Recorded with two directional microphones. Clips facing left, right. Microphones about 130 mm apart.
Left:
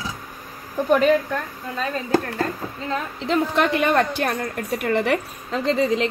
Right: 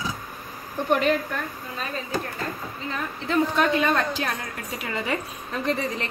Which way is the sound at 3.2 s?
70° left (ahead or behind).